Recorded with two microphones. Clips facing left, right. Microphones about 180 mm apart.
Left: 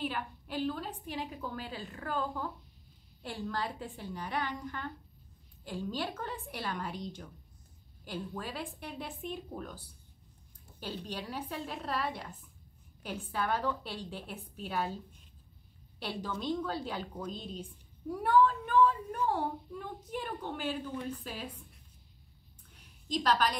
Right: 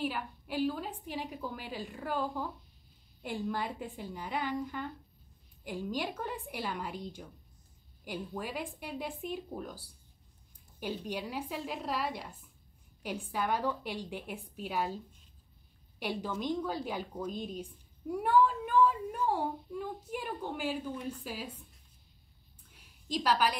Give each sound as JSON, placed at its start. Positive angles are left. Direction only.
{"t": 0.0, "sound": "a woman's voice", "side_deg": -10}
{"t": 16.0, "sound": "a woman's voice", "side_deg": -15}
{"t": 23.1, "sound": "a woman's voice", "side_deg": -10}